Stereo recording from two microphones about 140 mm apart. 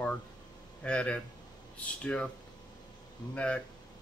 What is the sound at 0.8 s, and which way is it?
Speech, 5° left (ahead or behind).